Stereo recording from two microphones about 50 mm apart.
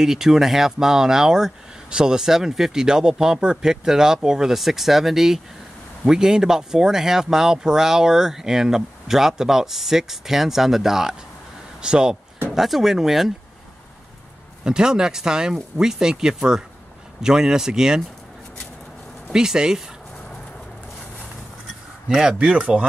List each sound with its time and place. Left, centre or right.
0.0 s speech: centre
12.5 s speech: centre
14.6 s speech: centre
19.3 s speech: centre
22.1 s speech: centre